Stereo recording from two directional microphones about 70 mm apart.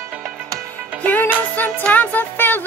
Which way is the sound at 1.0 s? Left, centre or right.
Left.